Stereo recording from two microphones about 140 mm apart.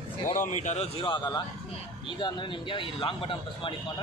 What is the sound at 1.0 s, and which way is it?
A man's voice, 35° left (ahead or behind).